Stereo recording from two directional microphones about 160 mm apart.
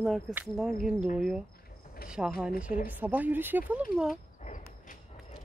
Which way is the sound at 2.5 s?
60° left (ahead or behind).